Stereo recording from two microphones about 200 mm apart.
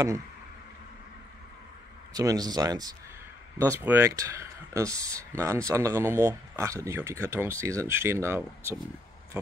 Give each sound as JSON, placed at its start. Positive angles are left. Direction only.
{"t": 2.1, "sound": "speech", "side_deg": -20}